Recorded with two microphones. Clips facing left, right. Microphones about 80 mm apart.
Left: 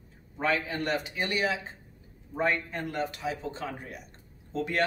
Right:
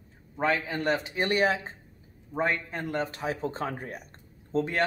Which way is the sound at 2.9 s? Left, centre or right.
Right.